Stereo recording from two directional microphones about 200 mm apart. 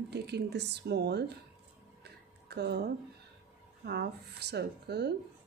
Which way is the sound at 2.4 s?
55° right (ahead or behind).